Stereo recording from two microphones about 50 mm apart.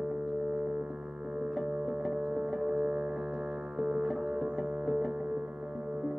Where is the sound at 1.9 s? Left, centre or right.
Centre.